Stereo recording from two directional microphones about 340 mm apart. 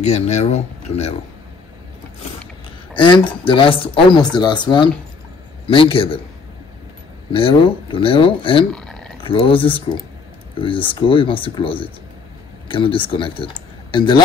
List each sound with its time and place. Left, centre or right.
0.0 s speech: centre
2.9 s speech: centre
7.3 s speech: centre
8.7 s a sound: centre
9.2 s speech: centre